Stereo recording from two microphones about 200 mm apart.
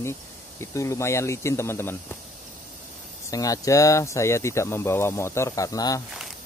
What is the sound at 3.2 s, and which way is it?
A man's voice, 15° left (ahead or behind).